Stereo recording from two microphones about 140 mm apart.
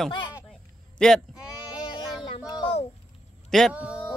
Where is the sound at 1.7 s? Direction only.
35° left (ahead or behind).